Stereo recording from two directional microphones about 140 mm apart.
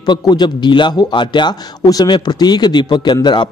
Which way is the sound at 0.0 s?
30° left (ahead or behind).